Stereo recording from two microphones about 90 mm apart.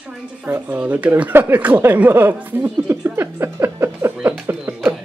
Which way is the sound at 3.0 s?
25° right (ahead or behind).